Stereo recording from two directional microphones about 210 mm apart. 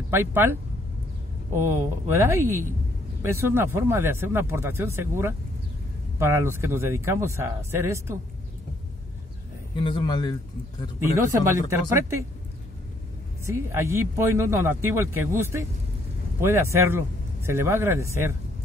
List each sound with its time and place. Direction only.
0.1 s speech: 10° right (ahead or behind)
9.8 s a man's voice: 20° left (ahead or behind)
11.1 s speech: 15° right (ahead or behind)
13.5 s speech: 15° right (ahead or behind)